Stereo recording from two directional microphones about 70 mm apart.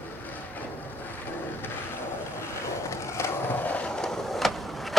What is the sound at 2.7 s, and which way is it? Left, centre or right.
Skateboard, left.